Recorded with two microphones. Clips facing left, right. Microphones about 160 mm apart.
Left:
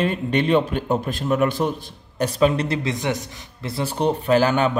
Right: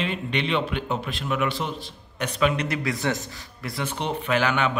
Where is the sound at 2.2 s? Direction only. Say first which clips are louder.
Left 5 dB; 35° left (ahead or behind); by 3.2 s 20° left (ahead or behind).